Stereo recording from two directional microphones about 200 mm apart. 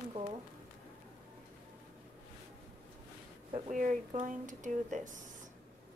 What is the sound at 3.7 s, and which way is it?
A woman's voice, 40° right (ahead or behind).